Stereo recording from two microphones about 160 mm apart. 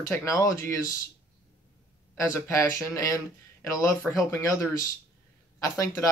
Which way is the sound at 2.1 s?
15° left (ahead or behind).